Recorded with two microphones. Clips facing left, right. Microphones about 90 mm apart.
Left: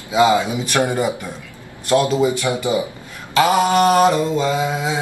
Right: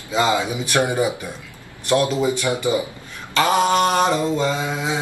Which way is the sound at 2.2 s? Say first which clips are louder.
Left 2 dB; 20° left (ahead or behind).